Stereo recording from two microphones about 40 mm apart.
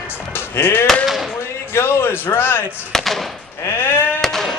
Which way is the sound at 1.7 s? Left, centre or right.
Left.